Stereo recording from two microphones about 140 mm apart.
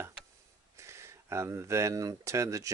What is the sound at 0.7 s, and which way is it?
Speech, 20° right (ahead or behind).